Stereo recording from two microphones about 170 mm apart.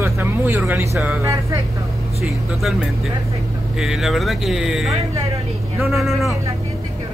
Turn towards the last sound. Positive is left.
turn(degrees=0)  # may be behind; listen again after turning